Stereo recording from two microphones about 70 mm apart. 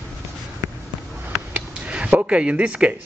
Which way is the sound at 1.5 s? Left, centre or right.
Centre.